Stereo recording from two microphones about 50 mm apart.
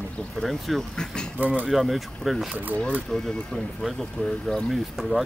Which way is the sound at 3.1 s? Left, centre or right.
Centre.